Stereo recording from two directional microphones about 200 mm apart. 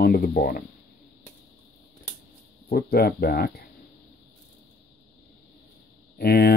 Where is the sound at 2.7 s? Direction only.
50° left (ahead or behind).